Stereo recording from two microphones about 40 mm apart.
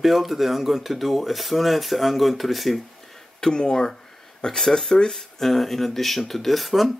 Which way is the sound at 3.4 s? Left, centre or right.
Centre.